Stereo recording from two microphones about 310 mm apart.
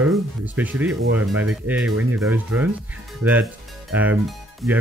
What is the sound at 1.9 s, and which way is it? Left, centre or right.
Speech, right.